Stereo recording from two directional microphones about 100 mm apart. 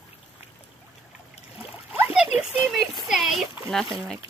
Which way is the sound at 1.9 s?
5° right (ahead or behind).